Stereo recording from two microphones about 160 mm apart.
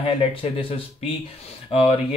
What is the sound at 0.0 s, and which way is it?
Speech, 35° left (ahead or behind).